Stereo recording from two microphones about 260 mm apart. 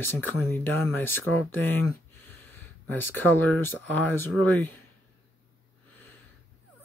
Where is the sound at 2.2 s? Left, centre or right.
Centre.